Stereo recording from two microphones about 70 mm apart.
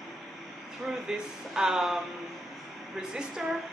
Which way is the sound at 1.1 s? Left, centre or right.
Centre.